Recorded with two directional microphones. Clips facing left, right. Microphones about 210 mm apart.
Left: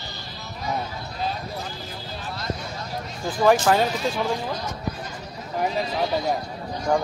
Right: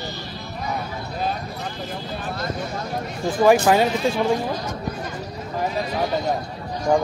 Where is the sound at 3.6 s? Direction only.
10° right (ahead or behind).